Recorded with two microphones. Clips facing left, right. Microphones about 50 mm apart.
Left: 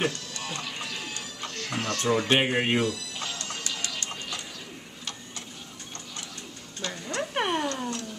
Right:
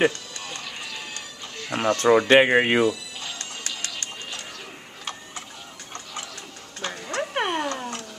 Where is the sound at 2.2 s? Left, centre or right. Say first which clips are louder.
Right 8 dB; right.